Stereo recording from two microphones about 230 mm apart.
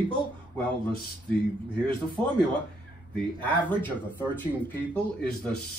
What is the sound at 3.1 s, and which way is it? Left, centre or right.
Speech, centre.